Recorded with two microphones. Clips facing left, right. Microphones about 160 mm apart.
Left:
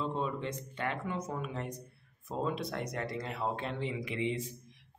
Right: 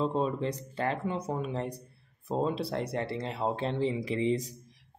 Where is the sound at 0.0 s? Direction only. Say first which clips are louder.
Right 6 dB; 35° right (ahead or behind).